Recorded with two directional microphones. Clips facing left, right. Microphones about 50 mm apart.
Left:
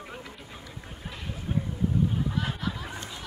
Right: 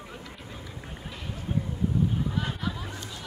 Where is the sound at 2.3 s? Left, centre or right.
Centre.